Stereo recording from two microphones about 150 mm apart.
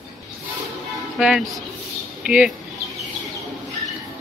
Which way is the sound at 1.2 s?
Centre (ahead or behind).